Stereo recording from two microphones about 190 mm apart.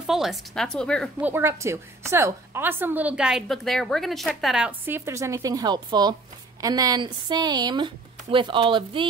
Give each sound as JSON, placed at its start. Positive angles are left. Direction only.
{"t": 0.0, "sound": "speech", "side_deg": 0}
{"t": 1.2, "sound": "a woman's voice", "side_deg": -10}